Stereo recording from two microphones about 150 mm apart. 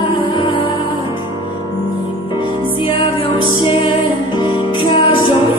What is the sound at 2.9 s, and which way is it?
Music, 30° left (ahead or behind).